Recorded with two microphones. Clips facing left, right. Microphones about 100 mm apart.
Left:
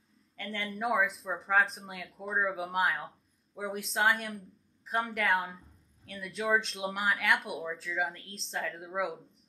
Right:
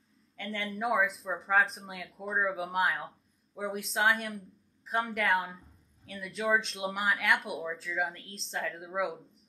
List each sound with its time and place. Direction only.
0.4 s speech: centre (ahead or behind)